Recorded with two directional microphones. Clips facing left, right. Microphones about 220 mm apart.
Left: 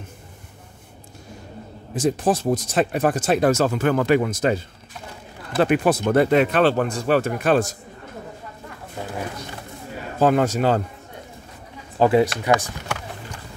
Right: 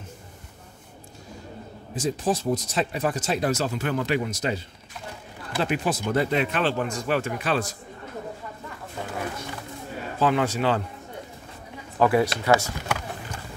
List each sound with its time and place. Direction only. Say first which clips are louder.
2.0 s speech: left 5 dB; 50° left (ahead or behind)
5.6 s speech: left 7 dB; 60° left (ahead or behind)
10.1 s speech: left 5 dB; 45° left (ahead or behind)
12.0 s speech: left 4 dB; 25° left (ahead or behind)